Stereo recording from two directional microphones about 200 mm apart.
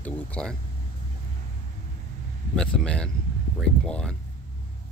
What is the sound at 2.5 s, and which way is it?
Speech, 5° left (ahead or behind).